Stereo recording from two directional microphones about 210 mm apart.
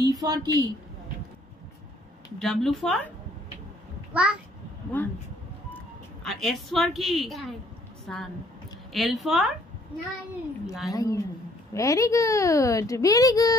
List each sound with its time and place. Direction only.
0.0 s a woman's voice: 15° right (ahead or behind)
2.3 s a woman's voice: centre (ahead or behind)
4.1 s a child's voice: 5° right (ahead or behind)
5.0 s a child's voice: 10° left (ahead or behind)
6.2 s a woman's voice: centre (ahead or behind)
10.9 s a child's voice: 15° left (ahead or behind)